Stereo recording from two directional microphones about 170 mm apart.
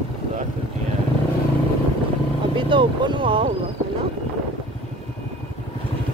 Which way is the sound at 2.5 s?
30° right (ahead or behind).